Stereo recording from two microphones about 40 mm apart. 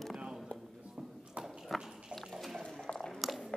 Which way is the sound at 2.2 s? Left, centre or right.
Centre.